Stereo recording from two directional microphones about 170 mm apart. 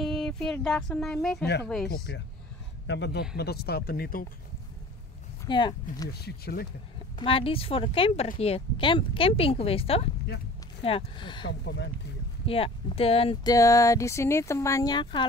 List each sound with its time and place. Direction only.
0.0 s speech: centre (ahead or behind)
1.4 s a man's voice: 75° left (ahead or behind)
2.1 s a man's voice: 90° left; by 4.3 s 60° left (ahead or behind)
5.4 s speech: 25° left (ahead or behind)
6.1 s a man's voice: 70° left (ahead or behind)
7.2 s speech: 30° left (ahead or behind)
11.4 s speech: 90° left
12.4 s speech: 35° left (ahead or behind)